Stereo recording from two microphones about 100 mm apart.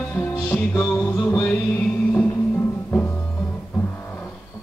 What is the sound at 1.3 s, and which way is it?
Music, 15° left (ahead or behind).